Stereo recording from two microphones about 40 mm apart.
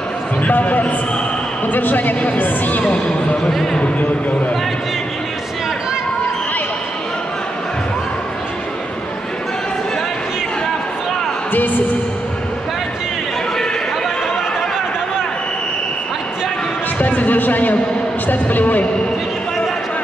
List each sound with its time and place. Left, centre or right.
0.4 s a man's voice: left
2.8 s a man's voice: left
17.0 s music: left
18.3 s speech: left